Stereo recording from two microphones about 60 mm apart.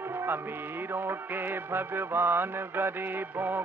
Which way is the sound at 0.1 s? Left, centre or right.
Right.